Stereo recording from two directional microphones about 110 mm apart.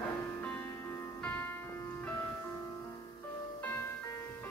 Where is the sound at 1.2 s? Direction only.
15° left (ahead or behind).